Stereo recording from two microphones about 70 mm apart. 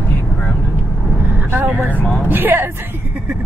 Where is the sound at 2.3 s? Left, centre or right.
Right.